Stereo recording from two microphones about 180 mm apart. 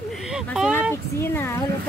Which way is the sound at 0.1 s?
Centre (ahead or behind).